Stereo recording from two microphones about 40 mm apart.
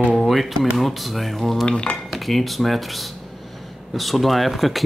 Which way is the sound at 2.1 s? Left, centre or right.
Centre.